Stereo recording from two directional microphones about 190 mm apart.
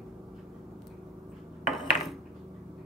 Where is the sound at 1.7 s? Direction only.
Centre (ahead or behind).